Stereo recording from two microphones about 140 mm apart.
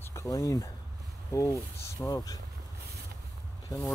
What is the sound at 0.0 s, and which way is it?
Speech, 20° left (ahead or behind).